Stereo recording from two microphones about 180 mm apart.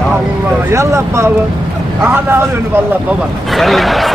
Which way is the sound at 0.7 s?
15° right (ahead or behind).